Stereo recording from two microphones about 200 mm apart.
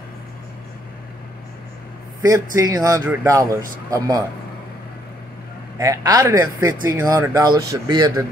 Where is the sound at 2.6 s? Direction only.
15° right (ahead or behind).